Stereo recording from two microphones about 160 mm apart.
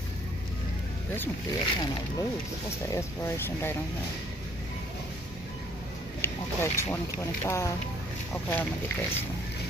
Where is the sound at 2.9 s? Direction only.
15° left (ahead or behind).